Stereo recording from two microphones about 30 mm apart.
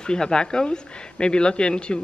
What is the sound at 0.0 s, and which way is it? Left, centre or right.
A woman's voice, left.